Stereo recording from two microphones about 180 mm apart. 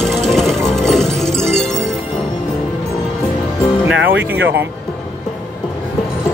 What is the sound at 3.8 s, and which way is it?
Music, 90° right.